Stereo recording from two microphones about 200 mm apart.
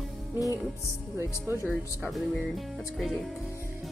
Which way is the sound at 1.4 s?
10° right (ahead or behind).